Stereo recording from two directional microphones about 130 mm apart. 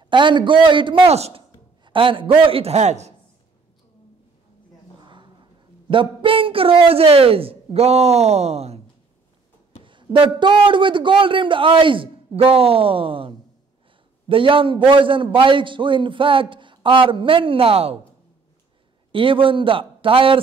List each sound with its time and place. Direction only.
0.0 s a man's voice: 35° right (ahead or behind)
1.1 s a man's voice: 55° right (ahead or behind)
1.9 s a man's voice: 40° right (ahead or behind); by 3.2 s 60° right (ahead or behind)
5.0 s a sound: 35° right (ahead or behind); by 8.8 s 55° right (ahead or behind)
9.8 s a man's voice: 40° right (ahead or behind)
19.1 s a man's voice: 40° right (ahead or behind)